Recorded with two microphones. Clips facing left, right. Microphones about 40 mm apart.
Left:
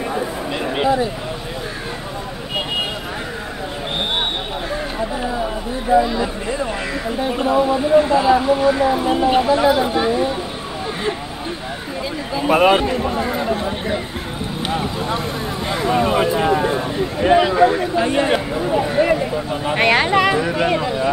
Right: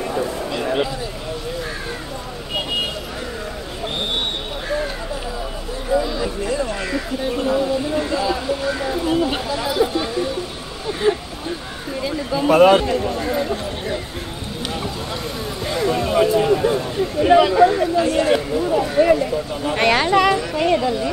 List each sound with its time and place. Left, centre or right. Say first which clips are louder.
0.5 s a sound: left 6 dB; left
5.9 s speech: left 4 dB; centre
12.4 s a man's voice: right 2 dB; centre
17.9 s a man's voice: even; left